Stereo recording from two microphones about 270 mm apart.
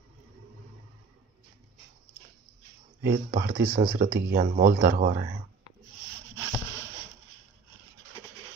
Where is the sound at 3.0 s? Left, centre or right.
Right.